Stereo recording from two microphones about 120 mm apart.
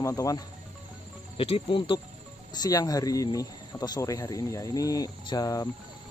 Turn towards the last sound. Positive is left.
turn(degrees=30)  # may be behind; listen again after turning